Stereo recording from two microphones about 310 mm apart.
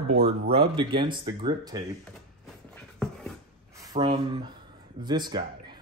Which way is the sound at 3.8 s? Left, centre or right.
Centre.